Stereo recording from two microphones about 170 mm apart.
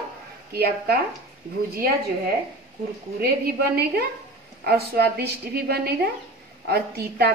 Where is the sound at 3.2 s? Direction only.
65° right (ahead or behind).